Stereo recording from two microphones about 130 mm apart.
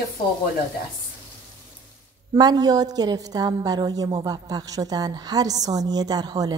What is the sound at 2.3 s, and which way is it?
A woman's voice, 30° right (ahead or behind).